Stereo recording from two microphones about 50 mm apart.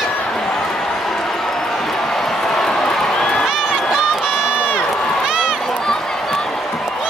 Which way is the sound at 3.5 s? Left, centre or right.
Centre.